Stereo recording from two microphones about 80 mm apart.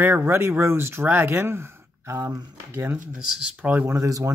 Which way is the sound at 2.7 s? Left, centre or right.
Right.